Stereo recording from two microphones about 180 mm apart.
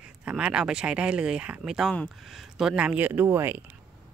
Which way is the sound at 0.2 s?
5° right (ahead or behind).